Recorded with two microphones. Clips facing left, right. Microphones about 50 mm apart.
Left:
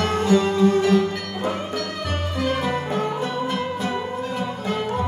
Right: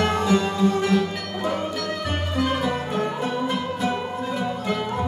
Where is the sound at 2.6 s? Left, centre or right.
Left.